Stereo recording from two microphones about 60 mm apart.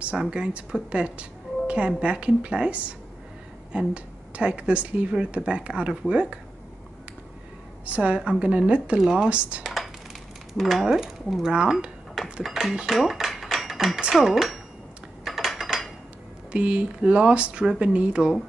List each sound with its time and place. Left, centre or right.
0.0 s speech: centre
7.8 s speech: right
9.6 s computer keyboard: centre
10.6 s speech: centre
12.8 s cutlery: centre
14.1 s speech: centre
15.2 s a sound: centre
16.5 s speech: centre